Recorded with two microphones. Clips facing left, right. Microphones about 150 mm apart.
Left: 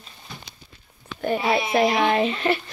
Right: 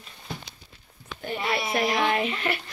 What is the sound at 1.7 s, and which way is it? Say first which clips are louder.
Speech: left 4 dB; 30° left (ahead or behind).